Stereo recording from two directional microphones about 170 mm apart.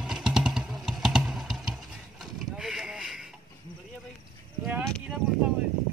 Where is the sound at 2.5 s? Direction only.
5° right (ahead or behind).